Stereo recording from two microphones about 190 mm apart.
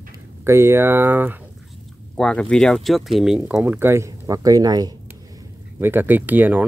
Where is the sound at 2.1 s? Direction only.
5° left (ahead or behind).